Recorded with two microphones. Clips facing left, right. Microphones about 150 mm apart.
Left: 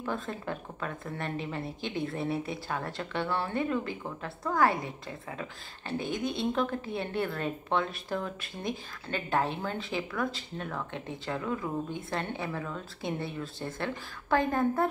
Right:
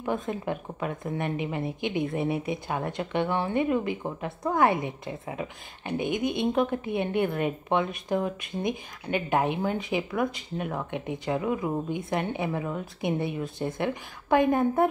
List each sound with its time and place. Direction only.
0.0 s speech: 20° right (ahead or behind)